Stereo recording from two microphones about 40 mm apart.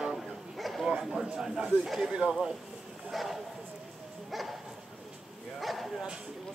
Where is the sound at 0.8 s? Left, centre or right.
Centre.